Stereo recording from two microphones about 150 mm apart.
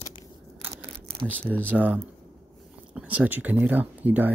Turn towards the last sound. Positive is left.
turn(degrees=-10)  # may be behind; listen again after turning